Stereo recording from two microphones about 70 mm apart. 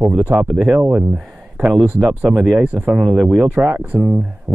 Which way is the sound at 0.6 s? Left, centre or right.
Centre.